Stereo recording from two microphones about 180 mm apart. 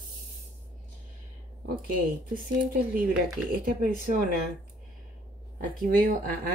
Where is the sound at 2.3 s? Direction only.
50° right (ahead or behind).